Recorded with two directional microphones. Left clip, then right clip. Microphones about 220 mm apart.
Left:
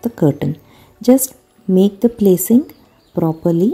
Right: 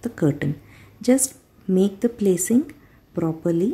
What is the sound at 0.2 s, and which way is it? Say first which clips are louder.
A woman's voice: left 6 dB; 25° left (ahead or behind).